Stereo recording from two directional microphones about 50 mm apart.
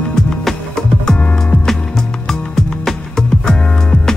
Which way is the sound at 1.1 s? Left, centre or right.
Left.